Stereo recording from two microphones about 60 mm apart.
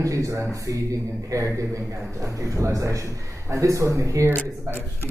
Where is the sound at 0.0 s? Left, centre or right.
Right.